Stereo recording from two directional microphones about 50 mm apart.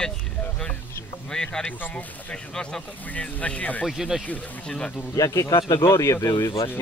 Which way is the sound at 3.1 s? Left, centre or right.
Left.